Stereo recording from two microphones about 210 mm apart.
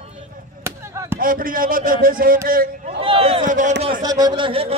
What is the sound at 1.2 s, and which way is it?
A man's voice, 40° right (ahead or behind).